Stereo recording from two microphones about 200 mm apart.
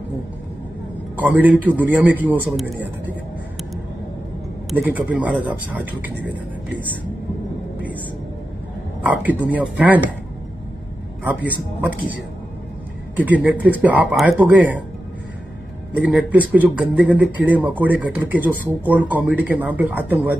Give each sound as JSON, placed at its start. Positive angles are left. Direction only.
{"t": 1.1, "sound": "speech", "side_deg": -10}
{"t": 4.6, "sound": "speech", "side_deg": -5}
{"t": 9.0, "sound": "speech", "side_deg": -10}
{"t": 11.2, "sound": "speech", "side_deg": -10}
{"t": 13.1, "sound": "speech", "side_deg": -10}
{"t": 15.9, "sound": "speech", "side_deg": -5}